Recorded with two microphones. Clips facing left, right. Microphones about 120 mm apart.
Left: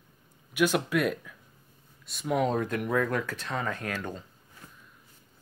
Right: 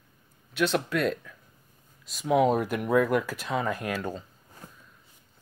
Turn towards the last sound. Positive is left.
turn(degrees=-10)  # may be behind; listen again after turning